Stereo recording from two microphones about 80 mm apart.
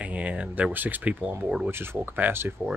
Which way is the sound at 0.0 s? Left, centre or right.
Centre.